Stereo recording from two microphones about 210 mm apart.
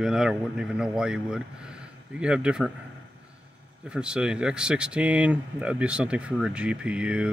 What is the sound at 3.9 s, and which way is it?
Speech, 5° right (ahead or behind).